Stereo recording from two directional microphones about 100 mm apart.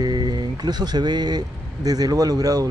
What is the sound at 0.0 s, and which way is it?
Speech, 45° right (ahead or behind).